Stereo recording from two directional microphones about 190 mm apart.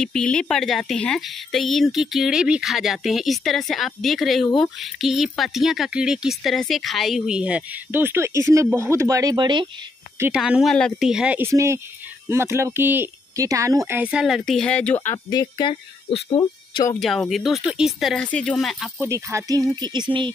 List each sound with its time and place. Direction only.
0.0 s speech: 5° left (ahead or behind); by 9.7 s 25° right (ahead or behind)
10.1 s speech: 10° right (ahead or behind); by 15.1 s 10° left (ahead or behind)
15.2 s speech: 25° left (ahead or behind)
17.0 s speech: centre (ahead or behind)
18.9 s speech: 15° right (ahead or behind)